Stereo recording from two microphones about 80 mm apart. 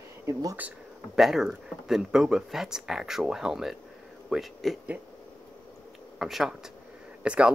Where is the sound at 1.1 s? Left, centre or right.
Centre.